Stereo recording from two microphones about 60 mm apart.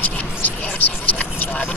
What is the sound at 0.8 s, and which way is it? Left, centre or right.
Vehicle, left.